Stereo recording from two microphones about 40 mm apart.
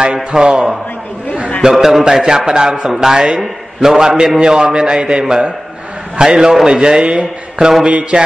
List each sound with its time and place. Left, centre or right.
0.0 s a man's voice: right
1.7 s a man's voice: centre; by 8.2 s right